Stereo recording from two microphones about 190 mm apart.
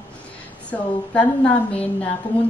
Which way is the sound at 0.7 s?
5° left (ahead or behind).